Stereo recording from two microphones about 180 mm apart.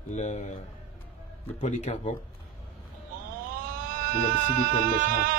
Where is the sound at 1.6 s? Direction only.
40° left (ahead or behind).